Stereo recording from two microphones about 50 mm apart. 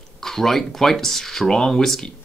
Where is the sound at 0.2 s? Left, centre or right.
Centre.